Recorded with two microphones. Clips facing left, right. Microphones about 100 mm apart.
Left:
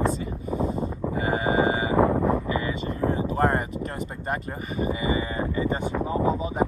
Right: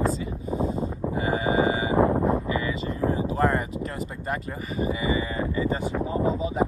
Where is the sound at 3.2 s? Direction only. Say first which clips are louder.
Left 1 dB; 40° left (ahead or behind).